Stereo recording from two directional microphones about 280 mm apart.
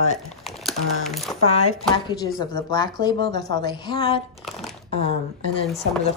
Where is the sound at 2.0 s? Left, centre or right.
Centre.